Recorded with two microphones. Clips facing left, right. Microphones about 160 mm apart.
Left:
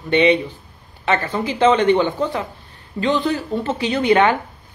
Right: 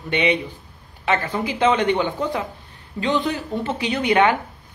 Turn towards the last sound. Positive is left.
turn(degrees=-15)  # may be behind; listen again after turning